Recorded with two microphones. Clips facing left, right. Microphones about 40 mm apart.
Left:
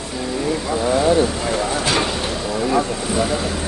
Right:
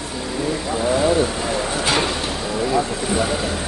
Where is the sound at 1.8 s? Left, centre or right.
Centre.